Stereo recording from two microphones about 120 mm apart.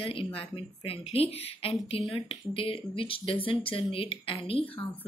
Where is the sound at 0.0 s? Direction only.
50° left (ahead or behind).